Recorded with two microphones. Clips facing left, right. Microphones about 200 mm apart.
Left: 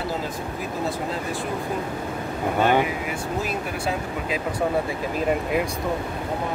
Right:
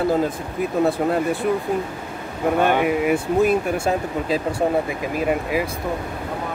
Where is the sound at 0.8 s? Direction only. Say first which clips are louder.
Right 8 dB; 60° right (ahead or behind).